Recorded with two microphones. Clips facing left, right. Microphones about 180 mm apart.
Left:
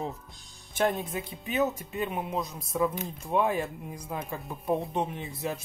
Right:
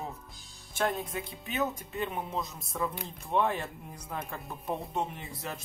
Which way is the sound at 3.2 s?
15° left (ahead or behind).